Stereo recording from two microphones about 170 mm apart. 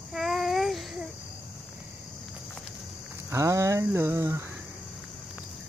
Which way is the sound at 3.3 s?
20° right (ahead or behind).